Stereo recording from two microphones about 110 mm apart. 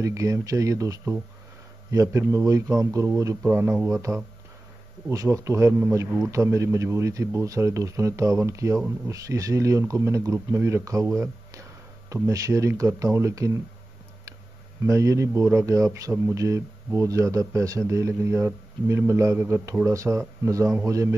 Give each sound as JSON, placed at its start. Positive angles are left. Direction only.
{"t": 0.0, "sound": "a man's voice", "side_deg": -30}
{"t": 14.9, "sound": "a man's voice", "side_deg": -30}